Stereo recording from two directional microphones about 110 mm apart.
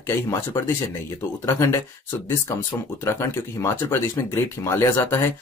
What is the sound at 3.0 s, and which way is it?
Speech, 25° left (ahead or behind).